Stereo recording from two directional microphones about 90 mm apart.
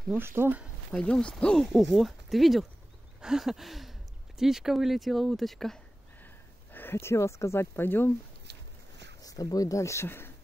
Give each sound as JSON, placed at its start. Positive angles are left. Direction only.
{"t": 0.1, "sound": "speech", "side_deg": -25}
{"t": 0.9, "sound": "speech", "side_deg": 10}
{"t": 6.2, "sound": "speech", "side_deg": 20}
{"t": 9.2, "sound": "speech", "side_deg": 40}